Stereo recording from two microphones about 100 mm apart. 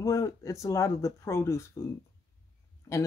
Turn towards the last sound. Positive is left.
turn(degrees=35)  # may be behind; listen again after turning